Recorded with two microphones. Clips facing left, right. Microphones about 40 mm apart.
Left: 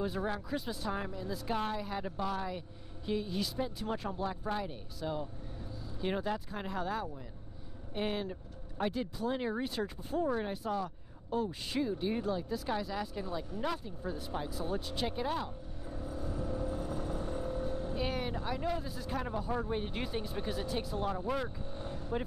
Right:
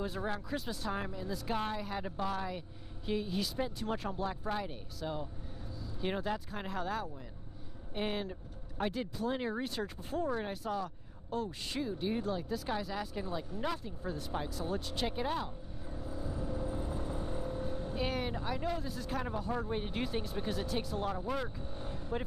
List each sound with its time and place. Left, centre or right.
0.0 s speech: centre
15.1 s vehicle: centre
17.2 s speech: centre